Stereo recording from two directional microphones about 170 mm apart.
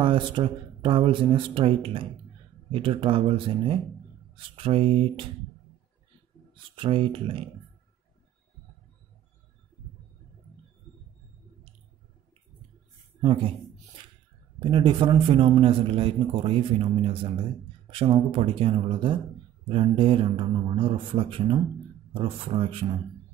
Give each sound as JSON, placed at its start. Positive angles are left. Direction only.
{"t": 0.0, "sound": "speech", "side_deg": -30}
{"t": 6.5, "sound": "speech", "side_deg": -30}
{"t": 13.2, "sound": "speech", "side_deg": -30}
{"t": 14.6, "sound": "speech", "side_deg": -30}